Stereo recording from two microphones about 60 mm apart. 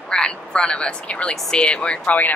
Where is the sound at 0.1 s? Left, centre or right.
Centre.